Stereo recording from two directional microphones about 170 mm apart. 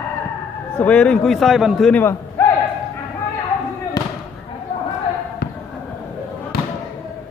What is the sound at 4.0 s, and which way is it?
Fireworks, 25° left (ahead or behind).